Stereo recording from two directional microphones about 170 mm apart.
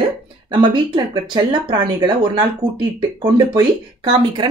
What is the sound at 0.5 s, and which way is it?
A woman's voice, 25° right (ahead or behind).